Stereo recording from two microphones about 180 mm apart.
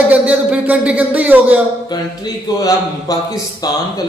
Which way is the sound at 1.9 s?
20° left (ahead or behind).